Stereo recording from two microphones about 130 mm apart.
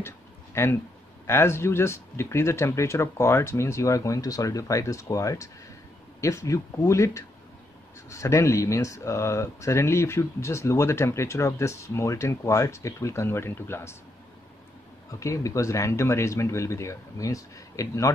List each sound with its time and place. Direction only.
0.6 s speech: 20° left (ahead or behind)
15.0 s speech: 25° left (ahead or behind)